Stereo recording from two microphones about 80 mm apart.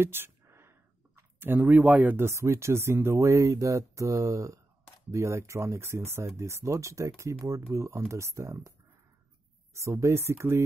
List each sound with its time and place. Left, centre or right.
0.0 s a sound: right
1.7 s speech: centre
2.2 s speech: right
9.8 s speech: right